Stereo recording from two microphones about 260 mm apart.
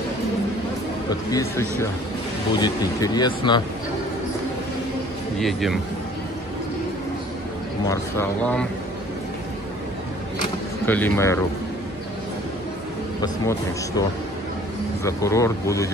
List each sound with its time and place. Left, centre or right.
1.3 s speech: centre
5.4 s speech: centre
7.9 s speech: centre
10.9 s speech: centre
13.2 s speech: centre
15.0 s speech: centre